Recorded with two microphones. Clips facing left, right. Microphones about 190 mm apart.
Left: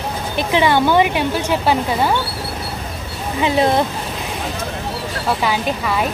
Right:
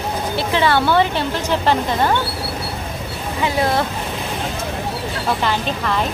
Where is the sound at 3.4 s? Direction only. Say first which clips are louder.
Left 3 dB; 20° left (ahead or behind).